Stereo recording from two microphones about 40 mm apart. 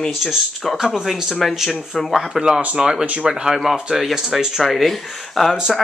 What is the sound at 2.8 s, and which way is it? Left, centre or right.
Speech, centre.